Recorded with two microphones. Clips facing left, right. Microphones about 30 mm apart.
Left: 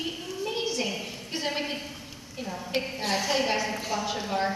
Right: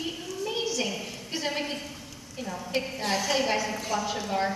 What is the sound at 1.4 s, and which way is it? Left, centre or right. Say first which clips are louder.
A woman's voice: left 1 dB; centre.